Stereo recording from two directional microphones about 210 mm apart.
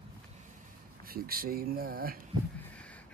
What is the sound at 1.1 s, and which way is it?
Speech, 45° right (ahead or behind).